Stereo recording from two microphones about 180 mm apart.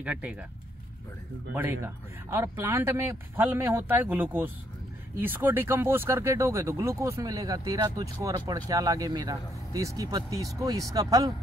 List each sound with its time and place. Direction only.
0.0 s speech: 5° right (ahead or behind)
1.5 s speech: 10° right (ahead or behind)